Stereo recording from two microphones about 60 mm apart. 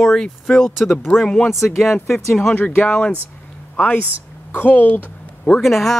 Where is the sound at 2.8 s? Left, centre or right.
Centre.